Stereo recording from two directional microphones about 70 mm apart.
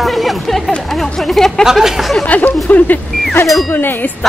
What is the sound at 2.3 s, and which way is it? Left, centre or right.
Speech, left.